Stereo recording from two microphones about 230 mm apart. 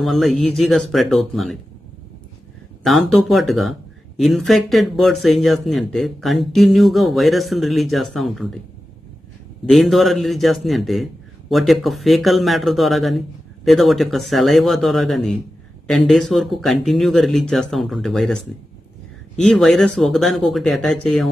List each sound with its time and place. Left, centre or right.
0.0 s speech: centre
2.8 s speech: centre
9.7 s speech: centre